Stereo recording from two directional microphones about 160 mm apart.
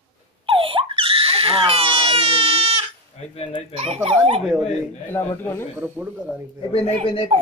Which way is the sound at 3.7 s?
40° right (ahead or behind).